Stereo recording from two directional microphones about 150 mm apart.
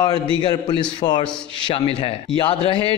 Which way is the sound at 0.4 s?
30° left (ahead or behind).